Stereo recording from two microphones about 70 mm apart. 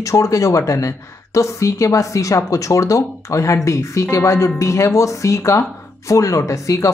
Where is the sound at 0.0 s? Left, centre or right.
Left.